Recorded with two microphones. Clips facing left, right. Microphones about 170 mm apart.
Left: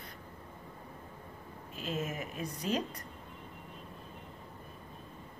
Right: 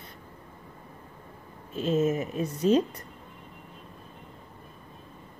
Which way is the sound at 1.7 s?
25° right (ahead or behind).